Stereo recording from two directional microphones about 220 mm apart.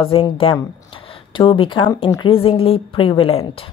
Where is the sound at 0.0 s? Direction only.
25° left (ahead or behind).